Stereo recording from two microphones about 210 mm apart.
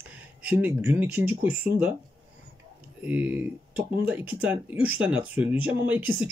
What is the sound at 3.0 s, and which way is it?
Speech, 5° right (ahead or behind).